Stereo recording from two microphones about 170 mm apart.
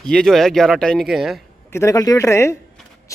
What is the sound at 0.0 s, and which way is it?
Speech, 5° left (ahead or behind).